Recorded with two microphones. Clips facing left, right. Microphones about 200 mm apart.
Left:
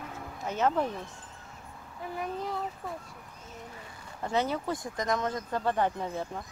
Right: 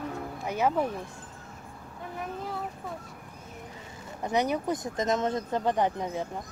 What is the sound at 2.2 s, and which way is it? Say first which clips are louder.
Speech: left 2 dB; centre (ahead or behind).